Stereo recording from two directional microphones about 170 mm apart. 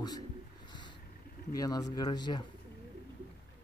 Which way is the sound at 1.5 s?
20° left (ahead or behind).